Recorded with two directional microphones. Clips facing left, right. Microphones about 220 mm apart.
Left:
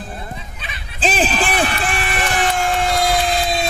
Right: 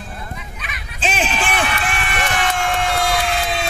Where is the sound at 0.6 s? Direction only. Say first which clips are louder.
Left 4 dB; 35° left (ahead or behind).